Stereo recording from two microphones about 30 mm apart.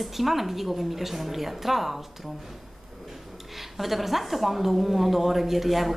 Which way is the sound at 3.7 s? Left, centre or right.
Centre.